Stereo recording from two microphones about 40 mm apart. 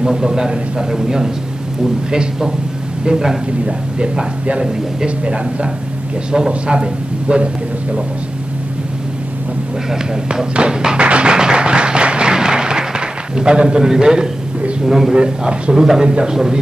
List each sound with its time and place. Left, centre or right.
0.0 s a man's voice: centre
3.6 s speech: right
10.2 s speech: right
11.0 s music: right
11.3 s applause: right
13.4 s a man's voice: right
15.1 s speech: right